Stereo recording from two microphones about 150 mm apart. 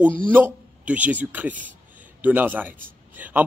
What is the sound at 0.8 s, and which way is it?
A man's voice, 10° right (ahead or behind).